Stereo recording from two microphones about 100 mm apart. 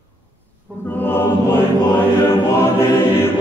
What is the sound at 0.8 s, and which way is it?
Mantra, 20° left (ahead or behind).